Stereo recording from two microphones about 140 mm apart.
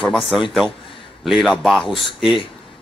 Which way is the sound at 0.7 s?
40° left (ahead or behind).